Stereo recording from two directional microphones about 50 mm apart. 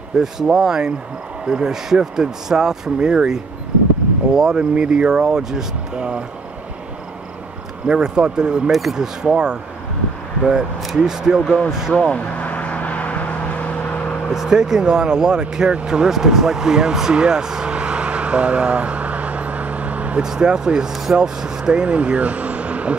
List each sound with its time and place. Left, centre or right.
0.2 s speech: centre
7.8 s speech: centre
11.9 s vehicle: left
14.3 s speech: centre; by 20.2 s right
20.2 s speech: centre